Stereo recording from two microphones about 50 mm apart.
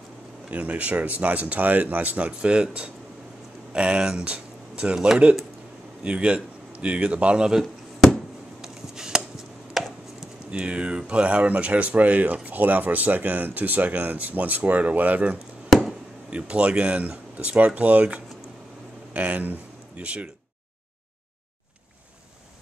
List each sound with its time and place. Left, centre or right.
0.5 s speech: right
8.5 s a sound: centre
9.8 s chopping: centre
10.5 s speech: right
19.1 s speech: right